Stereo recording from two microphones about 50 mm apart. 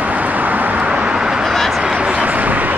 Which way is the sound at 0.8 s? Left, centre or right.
Right.